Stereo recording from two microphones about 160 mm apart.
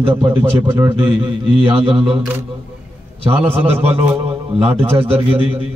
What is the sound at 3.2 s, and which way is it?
A man's voice, 35° right (ahead or behind).